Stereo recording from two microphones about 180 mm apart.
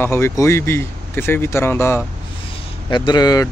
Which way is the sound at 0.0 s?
15° left (ahead or behind).